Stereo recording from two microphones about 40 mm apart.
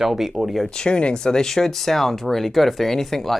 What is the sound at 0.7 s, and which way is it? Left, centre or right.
Speech, left.